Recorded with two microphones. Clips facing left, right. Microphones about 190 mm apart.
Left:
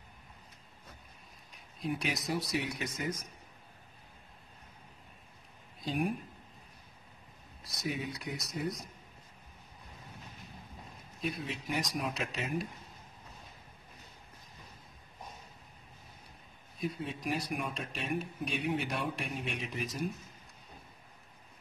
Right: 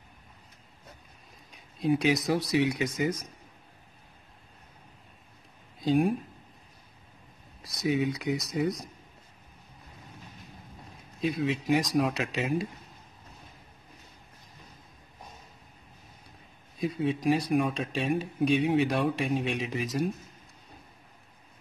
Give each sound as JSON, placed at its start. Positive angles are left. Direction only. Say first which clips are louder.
{"t": 1.8, "sound": "speech", "louder": "right 10 dB", "side_deg": -90}
{"t": 7.8, "sound": "speech", "louder": "right 10 dB", "side_deg": -90}
{"t": 11.1, "sound": "speech", "louder": "right 9 dB", "side_deg": -90}
{"t": 16.8, "sound": "speech", "louder": "right 10 dB", "side_deg": -90}